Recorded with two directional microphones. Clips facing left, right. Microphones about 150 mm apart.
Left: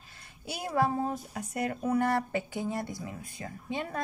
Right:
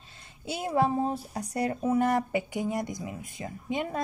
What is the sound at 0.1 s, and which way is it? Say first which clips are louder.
Speech: right 5 dB; 25° right (ahead or behind).